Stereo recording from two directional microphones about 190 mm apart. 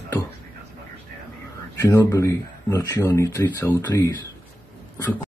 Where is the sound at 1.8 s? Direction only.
15° left (ahead or behind).